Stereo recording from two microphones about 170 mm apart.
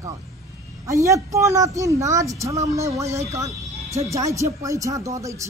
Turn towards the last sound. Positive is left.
turn(degrees=-20)  # may be behind; listen again after turning